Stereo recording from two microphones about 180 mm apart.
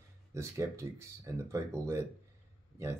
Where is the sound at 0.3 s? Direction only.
15° right (ahead or behind).